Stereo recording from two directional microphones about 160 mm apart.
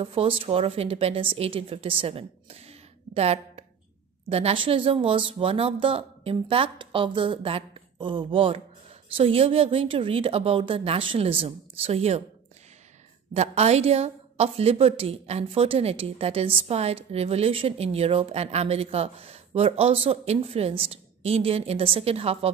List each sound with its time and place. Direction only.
0.0 s a woman's voice: 35° right (ahead or behind)
13.3 s a woman's voice: 40° right (ahead or behind)